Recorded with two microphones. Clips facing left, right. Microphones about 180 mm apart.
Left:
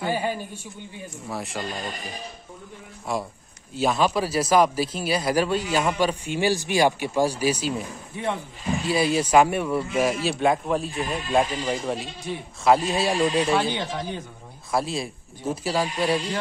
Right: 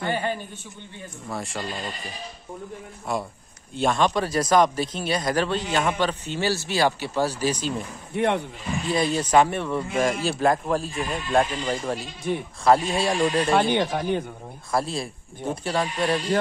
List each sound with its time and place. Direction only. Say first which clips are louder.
0.0 s a man's voice: left 1 dB; 10° left (ahead or behind)
3.1 s a man's voice: even; centre (ahead or behind)
8.1 s speech: right 6 dB; 70° right (ahead or behind)
8.8 s a man's voice: left 1 dB; 10° left (ahead or behind)
12.3 s speech: right 6 dB; 55° right (ahead or behind)
12.9 s a man's voice: even; centre (ahead or behind)
13.5 s speech: right 3 dB; 55° right (ahead or behind)
14.7 s a man's voice: even; centre (ahead or behind)